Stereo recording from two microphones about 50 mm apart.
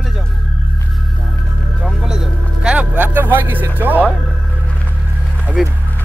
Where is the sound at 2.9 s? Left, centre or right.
Right.